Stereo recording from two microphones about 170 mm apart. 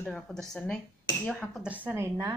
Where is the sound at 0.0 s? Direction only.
5° left (ahead or behind).